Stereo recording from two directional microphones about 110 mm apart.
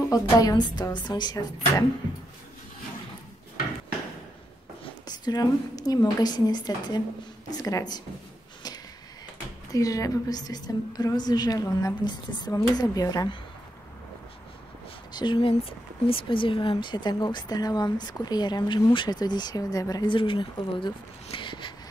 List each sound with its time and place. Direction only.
0.1 s speech: 35° left (ahead or behind)
4.8 s a woman's voice: 40° left (ahead or behind)
9.7 s speech: 30° left (ahead or behind)
15.1 s speech: 45° left (ahead or behind)
20.1 s speech: 50° left (ahead or behind)